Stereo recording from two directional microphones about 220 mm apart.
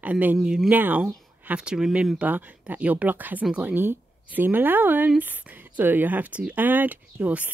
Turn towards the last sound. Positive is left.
turn(degrees=-5)  # may be behind; listen again after turning